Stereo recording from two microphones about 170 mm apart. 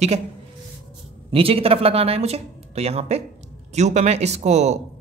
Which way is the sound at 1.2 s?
35° right (ahead or behind).